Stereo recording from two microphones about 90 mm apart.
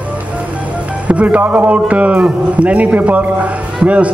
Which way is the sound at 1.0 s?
15° right (ahead or behind).